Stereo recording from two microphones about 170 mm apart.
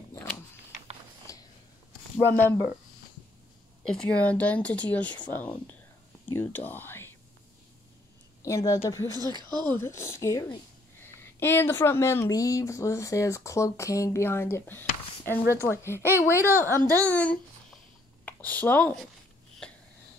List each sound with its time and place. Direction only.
1.3 s a sound: 20° left (ahead or behind)
2.1 s speech: 15° left (ahead or behind)
3.8 s speech: 5° left (ahead or behind)
8.4 s speech: 20° left (ahead or behind)
9.2 s speech: 25° right (ahead or behind)
9.7 s speech: 15° left (ahead or behind)
16.3 s speech: 15° right (ahead or behind)
17.1 s a child's voice: 10° left (ahead or behind)